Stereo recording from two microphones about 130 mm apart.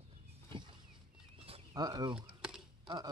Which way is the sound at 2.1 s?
5° right (ahead or behind).